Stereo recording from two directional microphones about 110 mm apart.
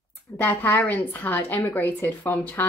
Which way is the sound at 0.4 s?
15° left (ahead or behind).